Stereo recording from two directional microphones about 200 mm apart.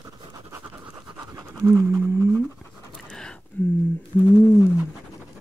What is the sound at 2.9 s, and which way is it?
Pant, 5° left (ahead or behind).